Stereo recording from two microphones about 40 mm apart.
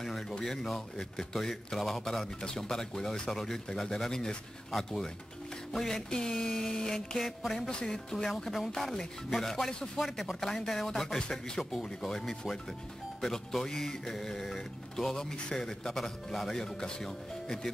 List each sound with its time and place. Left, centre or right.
0.4 s speech: centre
4.6 s speech: centre
7.2 s speech: centre
7.6 s speech: centre
9.9 s speech: centre